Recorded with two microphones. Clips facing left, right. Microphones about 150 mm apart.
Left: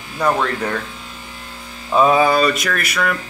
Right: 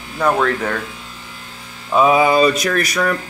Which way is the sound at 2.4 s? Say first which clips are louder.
Right 3 dB; 25° right (ahead or behind).